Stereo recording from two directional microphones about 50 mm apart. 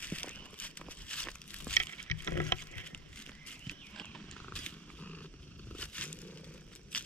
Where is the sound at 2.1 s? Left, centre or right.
Left.